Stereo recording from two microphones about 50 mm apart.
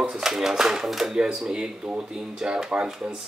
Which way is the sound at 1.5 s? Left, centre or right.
Centre.